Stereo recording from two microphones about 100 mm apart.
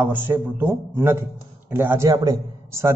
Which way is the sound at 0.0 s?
20° right (ahead or behind).